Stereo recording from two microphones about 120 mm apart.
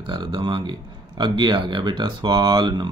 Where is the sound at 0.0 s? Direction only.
40° right (ahead or behind).